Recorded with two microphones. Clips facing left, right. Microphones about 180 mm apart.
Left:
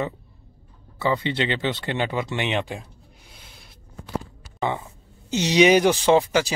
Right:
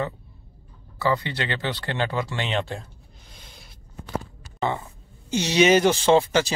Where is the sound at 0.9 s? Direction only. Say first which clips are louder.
Left 1 dB; 20° left (ahead or behind).